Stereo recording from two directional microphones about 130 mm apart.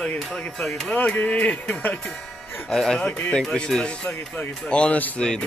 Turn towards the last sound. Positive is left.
turn(degrees=5)  # may be behind; listen again after turning